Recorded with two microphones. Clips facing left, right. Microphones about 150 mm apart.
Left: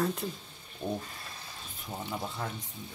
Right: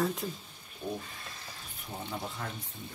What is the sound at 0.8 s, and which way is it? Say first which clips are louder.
Frying: left 3 dB; 40° left (ahead or behind).